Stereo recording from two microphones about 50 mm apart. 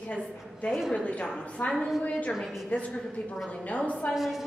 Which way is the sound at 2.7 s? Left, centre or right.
Left.